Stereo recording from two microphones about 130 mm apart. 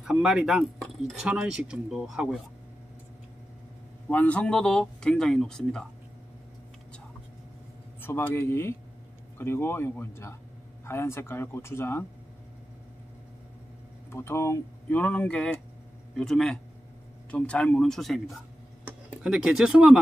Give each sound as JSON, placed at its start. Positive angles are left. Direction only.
{"t": 0.0, "sound": "speech", "side_deg": -5}
{"t": 4.1, "sound": "speech", "side_deg": 10}
{"t": 8.0, "sound": "speech", "side_deg": 15}
{"t": 14.1, "sound": "speech", "side_deg": 20}